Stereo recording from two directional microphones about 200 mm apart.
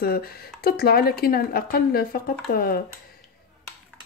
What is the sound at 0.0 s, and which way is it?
Speech, 50° left (ahead or behind).